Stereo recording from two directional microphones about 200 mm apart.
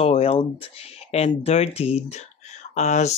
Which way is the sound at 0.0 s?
30° left (ahead or behind).